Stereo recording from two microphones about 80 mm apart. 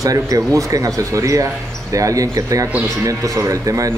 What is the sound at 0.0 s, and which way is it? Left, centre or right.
Speech, right.